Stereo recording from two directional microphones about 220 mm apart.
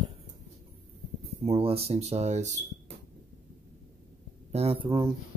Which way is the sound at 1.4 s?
25° right (ahead or behind).